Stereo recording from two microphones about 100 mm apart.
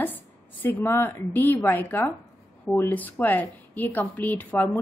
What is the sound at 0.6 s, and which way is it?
A woman's voice, 20° left (ahead or behind).